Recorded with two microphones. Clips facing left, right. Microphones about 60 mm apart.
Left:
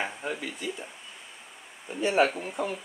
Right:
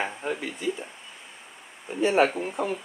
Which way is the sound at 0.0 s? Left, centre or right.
Centre.